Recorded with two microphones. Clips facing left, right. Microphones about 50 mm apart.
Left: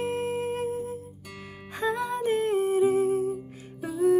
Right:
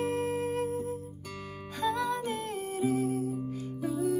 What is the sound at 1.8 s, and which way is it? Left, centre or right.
Music, left.